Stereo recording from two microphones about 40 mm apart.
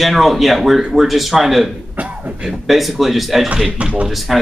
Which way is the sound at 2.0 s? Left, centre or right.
Right.